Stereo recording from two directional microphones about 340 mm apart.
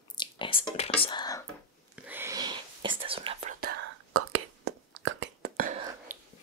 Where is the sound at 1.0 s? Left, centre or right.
Centre.